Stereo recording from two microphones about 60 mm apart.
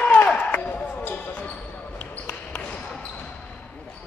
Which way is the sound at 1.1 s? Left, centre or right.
Left.